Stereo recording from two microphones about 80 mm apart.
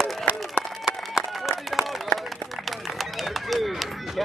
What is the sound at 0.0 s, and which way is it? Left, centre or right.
Run, centre.